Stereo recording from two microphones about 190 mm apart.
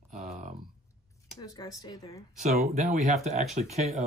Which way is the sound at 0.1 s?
40° right (ahead or behind).